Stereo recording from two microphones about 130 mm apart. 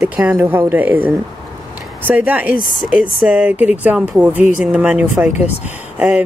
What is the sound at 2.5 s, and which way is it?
Speech, 90° left.